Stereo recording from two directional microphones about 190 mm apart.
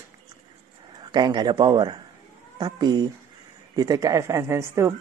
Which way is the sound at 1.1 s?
25° right (ahead or behind).